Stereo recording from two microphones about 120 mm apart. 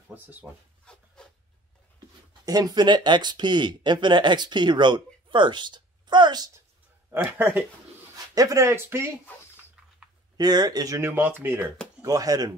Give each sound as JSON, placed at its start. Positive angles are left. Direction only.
{"t": 0.1, "sound": "speech", "side_deg": -15}
{"t": 0.8, "sound": "rub", "side_deg": 5}
{"t": 2.4, "sound": "speech", "side_deg": -30}
{"t": 7.1, "sound": "speech", "side_deg": -15}
{"t": 10.3, "sound": "speech", "side_deg": -35}
{"t": 11.0, "sound": "speech", "side_deg": -15}
{"t": 12.0, "sound": "speech", "side_deg": -30}